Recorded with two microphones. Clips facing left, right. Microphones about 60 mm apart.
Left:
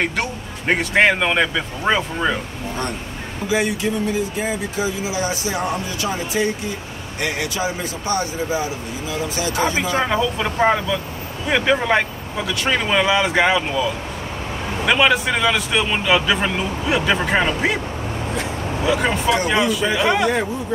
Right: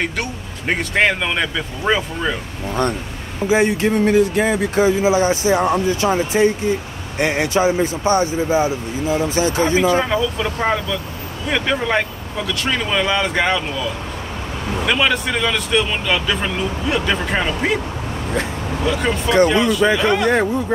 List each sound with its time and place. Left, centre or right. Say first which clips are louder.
0.0 s speech: left 1 dB; centre
3.4 s speech: right 5 dB; right
3.7 s speech: right 6 dB; right
9.9 s speech: right 1 dB; centre
14.9 s speech: left 2 dB; centre
18.9 s speech: left 1 dB; centre